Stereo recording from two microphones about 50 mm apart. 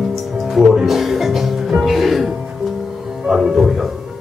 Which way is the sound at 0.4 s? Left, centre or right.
Centre.